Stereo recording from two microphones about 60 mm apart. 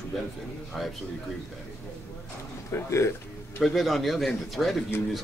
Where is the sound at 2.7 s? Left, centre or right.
Left.